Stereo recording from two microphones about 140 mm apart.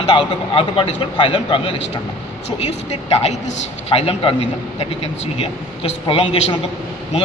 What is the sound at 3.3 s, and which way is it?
A man's voice, 50° left (ahead or behind).